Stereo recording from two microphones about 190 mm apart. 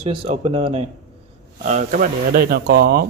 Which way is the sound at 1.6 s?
40° right (ahead or behind).